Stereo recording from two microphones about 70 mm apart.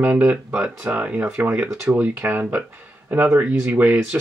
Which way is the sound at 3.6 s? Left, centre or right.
Right.